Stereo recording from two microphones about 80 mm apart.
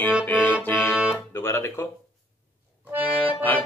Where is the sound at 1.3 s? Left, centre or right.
Left.